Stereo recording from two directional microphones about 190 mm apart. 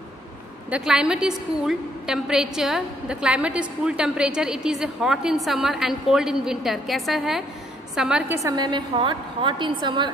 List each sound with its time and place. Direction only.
0.7 s a woman's voice: 5° right (ahead or behind)
8.4 s a woman's voice: 20° right (ahead or behind)